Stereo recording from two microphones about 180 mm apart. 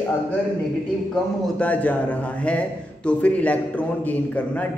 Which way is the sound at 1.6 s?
10° left (ahead or behind).